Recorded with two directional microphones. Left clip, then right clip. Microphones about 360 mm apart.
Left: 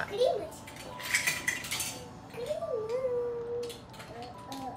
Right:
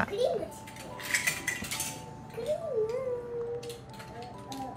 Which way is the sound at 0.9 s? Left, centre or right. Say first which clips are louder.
Even; centre.